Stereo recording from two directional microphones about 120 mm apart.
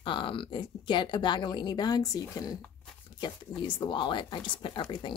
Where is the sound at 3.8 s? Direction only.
40° left (ahead or behind).